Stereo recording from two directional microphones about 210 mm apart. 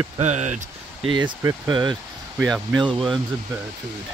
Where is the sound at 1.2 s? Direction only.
20° right (ahead or behind).